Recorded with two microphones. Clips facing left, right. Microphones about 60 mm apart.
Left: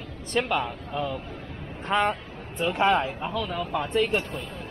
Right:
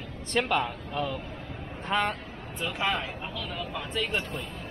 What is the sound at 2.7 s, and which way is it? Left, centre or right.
Speech, left.